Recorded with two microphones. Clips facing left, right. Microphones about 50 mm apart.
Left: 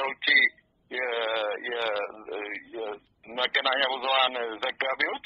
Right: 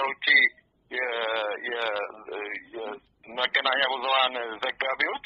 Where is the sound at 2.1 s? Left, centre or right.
Centre.